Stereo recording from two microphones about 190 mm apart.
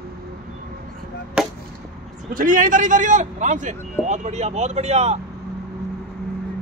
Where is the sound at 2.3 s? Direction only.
45° right (ahead or behind).